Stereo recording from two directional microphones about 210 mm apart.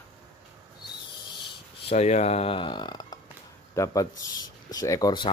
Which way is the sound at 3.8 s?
10° left (ahead or behind).